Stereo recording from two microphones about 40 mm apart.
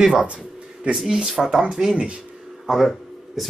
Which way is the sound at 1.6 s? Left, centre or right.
Centre.